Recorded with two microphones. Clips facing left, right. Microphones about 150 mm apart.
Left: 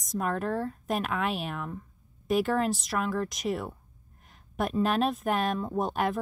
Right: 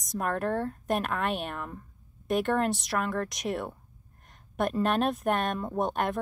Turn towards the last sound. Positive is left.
turn(degrees=0)  # may be behind; listen again after turning